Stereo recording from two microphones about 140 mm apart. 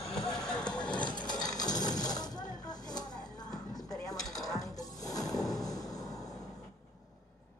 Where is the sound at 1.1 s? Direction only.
30° left (ahead or behind).